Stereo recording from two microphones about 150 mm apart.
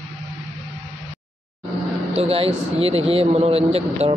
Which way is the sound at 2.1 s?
40° right (ahead or behind).